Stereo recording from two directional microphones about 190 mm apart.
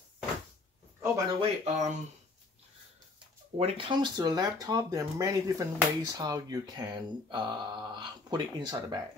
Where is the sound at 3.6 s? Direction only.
30° right (ahead or behind).